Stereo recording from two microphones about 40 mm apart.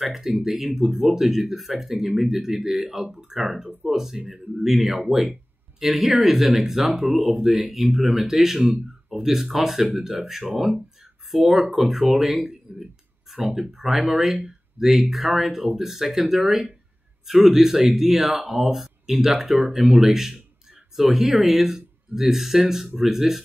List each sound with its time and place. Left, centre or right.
0.0 s speech: centre
0.7 s speech: centre
3.0 s speech: right